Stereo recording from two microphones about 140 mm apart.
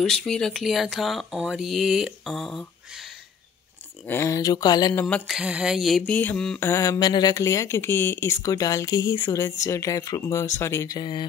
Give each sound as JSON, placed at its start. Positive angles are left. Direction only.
{"t": 0.0, "sound": "speech", "side_deg": 5}
{"t": 4.0, "sound": "speech", "side_deg": 15}
{"t": 5.0, "sound": "speech", "side_deg": 0}
{"t": 6.6, "sound": "speech", "side_deg": 20}